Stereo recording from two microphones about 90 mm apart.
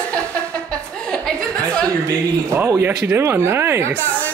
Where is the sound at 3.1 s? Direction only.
25° right (ahead or behind).